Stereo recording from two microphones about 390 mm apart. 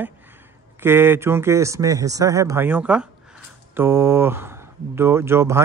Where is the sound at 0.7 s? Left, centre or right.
Centre.